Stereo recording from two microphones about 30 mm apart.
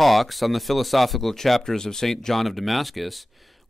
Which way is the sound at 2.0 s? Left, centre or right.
Centre.